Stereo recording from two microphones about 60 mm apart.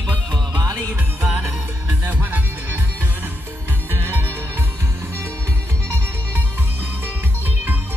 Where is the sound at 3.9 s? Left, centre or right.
Right.